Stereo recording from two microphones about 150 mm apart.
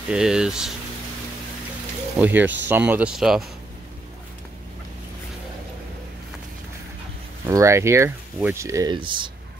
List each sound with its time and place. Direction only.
0.1 s speech: 5° right (ahead or behind)
2.1 s speech: 10° right (ahead or behind)
7.4 s speech: 20° right (ahead or behind)